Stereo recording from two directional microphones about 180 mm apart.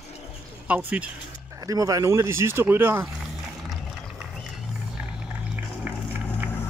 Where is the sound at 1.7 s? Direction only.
20° right (ahead or behind).